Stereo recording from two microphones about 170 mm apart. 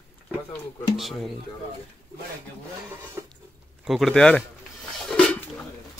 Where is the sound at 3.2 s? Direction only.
15° right (ahead or behind).